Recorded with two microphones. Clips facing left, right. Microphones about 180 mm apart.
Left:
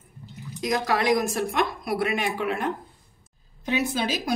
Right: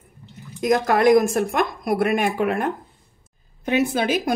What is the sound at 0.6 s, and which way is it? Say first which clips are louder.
A woman's voice: right 6 dB; 50° right (ahead or behind).